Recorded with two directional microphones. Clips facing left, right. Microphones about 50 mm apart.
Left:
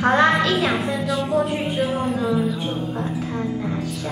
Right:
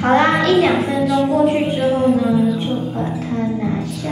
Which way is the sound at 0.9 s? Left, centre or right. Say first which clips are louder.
Right 6 dB; centre.